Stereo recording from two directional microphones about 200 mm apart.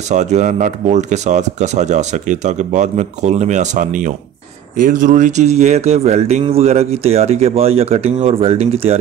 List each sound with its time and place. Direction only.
0.1 s speech: 35° right (ahead or behind)